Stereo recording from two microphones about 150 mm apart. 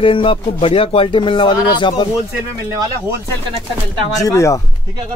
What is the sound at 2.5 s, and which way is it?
Speech, 25° right (ahead or behind).